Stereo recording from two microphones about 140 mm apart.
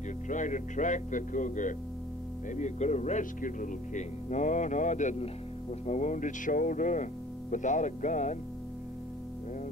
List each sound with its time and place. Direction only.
0.3 s speech: 65° left (ahead or behind)